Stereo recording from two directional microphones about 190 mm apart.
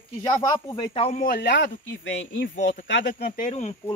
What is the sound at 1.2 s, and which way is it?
Speech, 55° left (ahead or behind).